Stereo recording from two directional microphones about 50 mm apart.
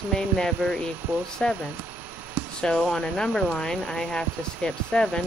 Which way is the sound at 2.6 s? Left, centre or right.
Centre.